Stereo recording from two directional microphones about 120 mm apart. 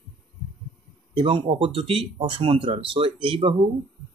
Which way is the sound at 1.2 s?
50° right (ahead or behind).